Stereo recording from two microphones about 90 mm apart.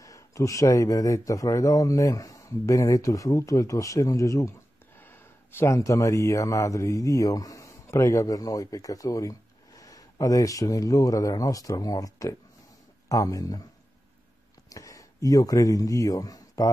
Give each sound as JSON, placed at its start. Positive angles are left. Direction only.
{"t": 0.0, "sound": "speech", "side_deg": 35}
{"t": 5.0, "sound": "a sound", "side_deg": 25}
{"t": 5.8, "sound": "speech", "side_deg": 35}
{"t": 14.7, "sound": "speech", "side_deg": 40}